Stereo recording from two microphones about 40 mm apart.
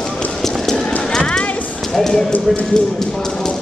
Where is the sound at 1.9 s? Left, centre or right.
Centre.